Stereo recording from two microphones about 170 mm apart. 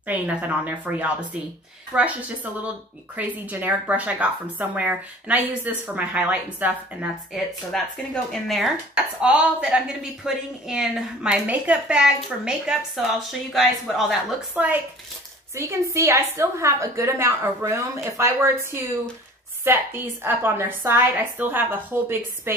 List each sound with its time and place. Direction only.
0.0 s a woman's voice: 10° right (ahead or behind)
7.7 s a woman's voice: 5° left (ahead or behind); by 22.5 s 15° right (ahead or behind)